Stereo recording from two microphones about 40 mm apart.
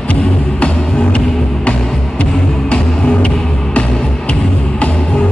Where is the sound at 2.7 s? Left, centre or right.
Left.